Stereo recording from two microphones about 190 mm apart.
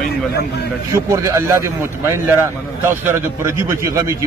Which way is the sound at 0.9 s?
15° right (ahead or behind).